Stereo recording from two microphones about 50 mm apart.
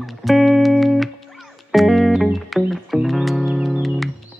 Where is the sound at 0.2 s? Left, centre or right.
Centre.